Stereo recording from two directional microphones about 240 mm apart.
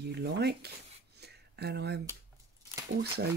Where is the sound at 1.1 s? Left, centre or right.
Right.